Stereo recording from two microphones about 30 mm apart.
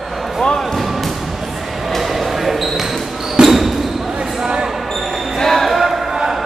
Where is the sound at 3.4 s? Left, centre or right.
Centre.